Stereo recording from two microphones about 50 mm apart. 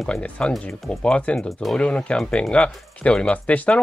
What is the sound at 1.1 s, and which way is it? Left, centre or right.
Speech, left.